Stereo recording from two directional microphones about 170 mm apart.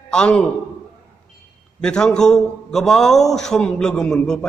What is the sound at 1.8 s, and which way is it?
A man's voice, 5° left (ahead or behind).